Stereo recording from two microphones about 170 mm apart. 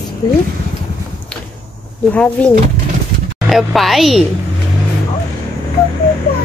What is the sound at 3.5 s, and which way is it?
Speech, centre (ahead or behind).